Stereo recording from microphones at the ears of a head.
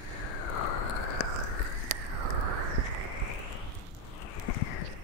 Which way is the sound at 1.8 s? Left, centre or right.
Right.